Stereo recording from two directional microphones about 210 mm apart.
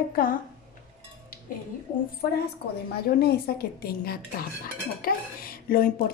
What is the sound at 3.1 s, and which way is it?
A woman's voice, 50° left (ahead or behind).